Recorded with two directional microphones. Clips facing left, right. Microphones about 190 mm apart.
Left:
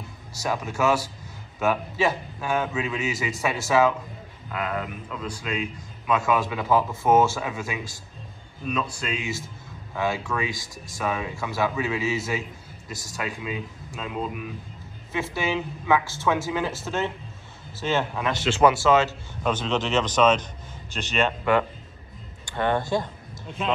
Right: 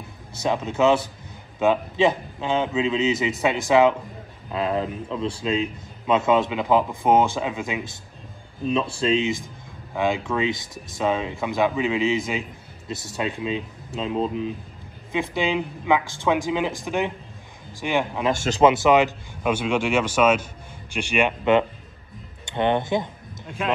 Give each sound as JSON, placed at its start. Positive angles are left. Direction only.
{"t": 0.4, "sound": "a man's voice", "side_deg": -20}
{"t": 18.3, "sound": "speech", "side_deg": -45}
{"t": 18.6, "sound": "speech", "side_deg": -20}